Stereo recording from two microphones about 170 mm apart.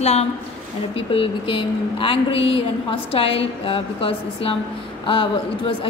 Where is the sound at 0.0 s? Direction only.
40° left (ahead or behind).